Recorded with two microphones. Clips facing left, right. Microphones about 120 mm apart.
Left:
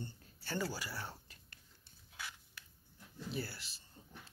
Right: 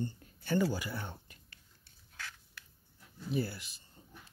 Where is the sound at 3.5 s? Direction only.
55° right (ahead or behind).